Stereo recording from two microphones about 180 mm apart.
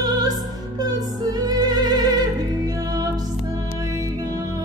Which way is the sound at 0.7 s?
20° right (ahead or behind).